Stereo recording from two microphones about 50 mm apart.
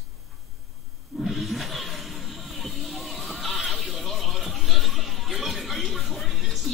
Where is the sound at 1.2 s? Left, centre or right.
Centre.